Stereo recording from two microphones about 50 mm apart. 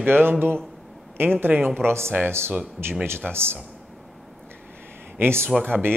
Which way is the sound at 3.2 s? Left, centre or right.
Centre.